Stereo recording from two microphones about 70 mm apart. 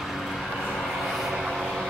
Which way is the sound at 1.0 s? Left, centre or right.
Centre.